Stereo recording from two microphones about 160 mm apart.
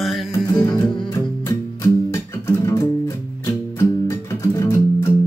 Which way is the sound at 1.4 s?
20° left (ahead or behind).